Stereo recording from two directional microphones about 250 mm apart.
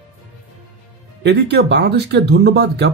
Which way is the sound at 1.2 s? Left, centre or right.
Right.